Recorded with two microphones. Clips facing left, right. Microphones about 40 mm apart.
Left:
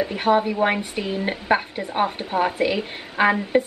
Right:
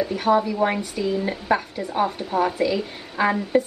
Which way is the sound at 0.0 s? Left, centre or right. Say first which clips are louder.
Even; left.